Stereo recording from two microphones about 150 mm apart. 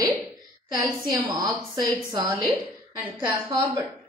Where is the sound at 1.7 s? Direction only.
30° right (ahead or behind).